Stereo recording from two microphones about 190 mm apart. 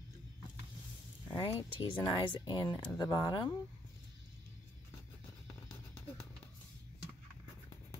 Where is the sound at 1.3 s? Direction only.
20° left (ahead or behind).